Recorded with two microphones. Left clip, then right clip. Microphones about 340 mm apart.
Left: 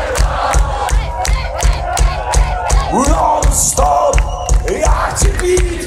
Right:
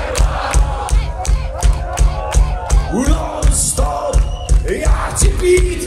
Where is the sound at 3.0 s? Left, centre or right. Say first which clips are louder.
Left 8 dB; centre.